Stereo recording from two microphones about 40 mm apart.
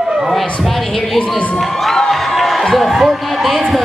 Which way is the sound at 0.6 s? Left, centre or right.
Centre.